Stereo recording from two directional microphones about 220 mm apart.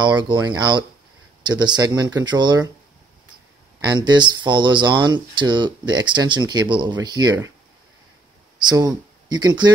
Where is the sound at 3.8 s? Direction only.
20° right (ahead or behind).